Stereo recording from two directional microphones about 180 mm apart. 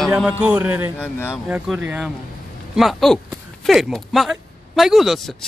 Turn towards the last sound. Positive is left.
turn(degrees=0)  # may be behind; listen again after turning